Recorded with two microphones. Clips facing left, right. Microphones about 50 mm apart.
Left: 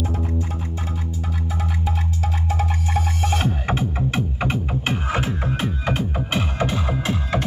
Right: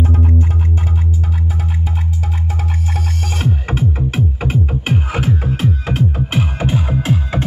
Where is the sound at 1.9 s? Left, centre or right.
Centre.